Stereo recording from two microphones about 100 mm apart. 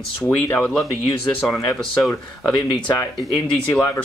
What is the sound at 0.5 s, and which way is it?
Speech, 10° left (ahead or behind).